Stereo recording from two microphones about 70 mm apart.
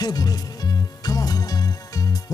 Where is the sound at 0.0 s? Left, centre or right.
Left.